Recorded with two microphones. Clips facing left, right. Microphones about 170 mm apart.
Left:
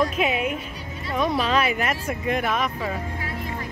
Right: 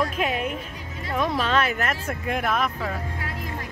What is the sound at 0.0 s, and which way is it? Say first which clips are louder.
Music: left 2 dB; 5° left (ahead or behind).